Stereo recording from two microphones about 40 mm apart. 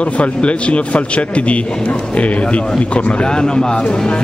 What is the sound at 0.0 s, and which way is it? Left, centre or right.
A man's voice, left.